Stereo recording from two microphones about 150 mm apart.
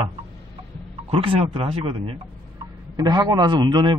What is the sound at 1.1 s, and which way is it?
Speech, 40° right (ahead or behind).